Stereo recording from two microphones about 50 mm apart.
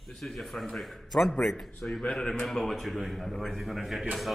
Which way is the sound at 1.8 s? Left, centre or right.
Left.